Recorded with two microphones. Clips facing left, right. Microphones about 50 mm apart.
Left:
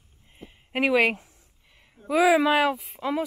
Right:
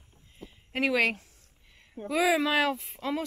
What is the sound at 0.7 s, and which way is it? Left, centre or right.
Speech, centre.